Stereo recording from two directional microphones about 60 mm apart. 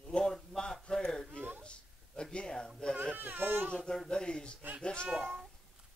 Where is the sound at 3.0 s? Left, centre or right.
Right.